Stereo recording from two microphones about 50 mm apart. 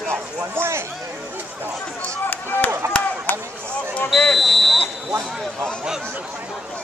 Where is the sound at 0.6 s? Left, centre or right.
Right.